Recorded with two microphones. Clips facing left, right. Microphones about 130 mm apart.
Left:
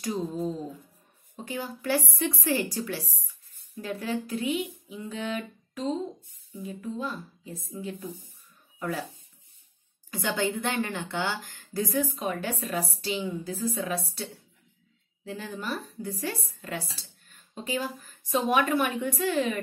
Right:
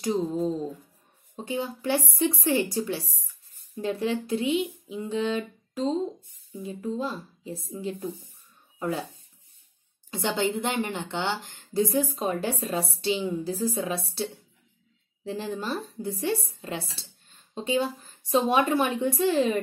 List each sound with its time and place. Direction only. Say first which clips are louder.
0.0 s a woman's voice: right 4 dB; 25° right (ahead or behind)
8.7 s a sound: right 3 dB; 25° right (ahead or behind)
10.1 s a woman's voice: right 2 dB; 25° right (ahead or behind)